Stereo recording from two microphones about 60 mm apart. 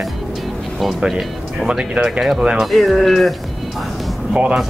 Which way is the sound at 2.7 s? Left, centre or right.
Centre.